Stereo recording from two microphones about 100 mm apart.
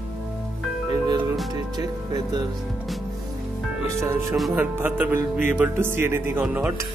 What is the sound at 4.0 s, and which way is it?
Speech, 25° right (ahead or behind).